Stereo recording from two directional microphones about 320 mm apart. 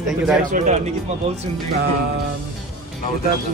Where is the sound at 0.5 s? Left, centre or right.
Right.